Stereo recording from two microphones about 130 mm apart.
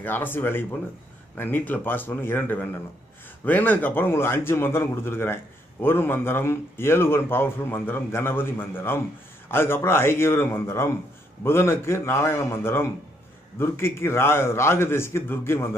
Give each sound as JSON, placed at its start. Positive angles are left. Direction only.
{"t": 0.0, "sound": "a man's voice", "side_deg": 15}